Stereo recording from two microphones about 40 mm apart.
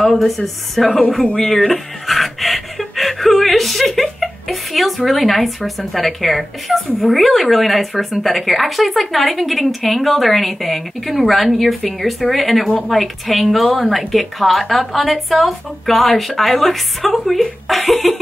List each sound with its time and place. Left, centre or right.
0.8 s speech: centre
1.2 s speech: left
1.6 s speech: centre